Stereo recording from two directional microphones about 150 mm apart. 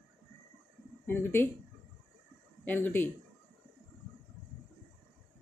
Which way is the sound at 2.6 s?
10° left (ahead or behind).